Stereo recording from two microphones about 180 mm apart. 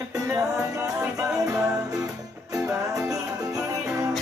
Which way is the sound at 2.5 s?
10° right (ahead or behind).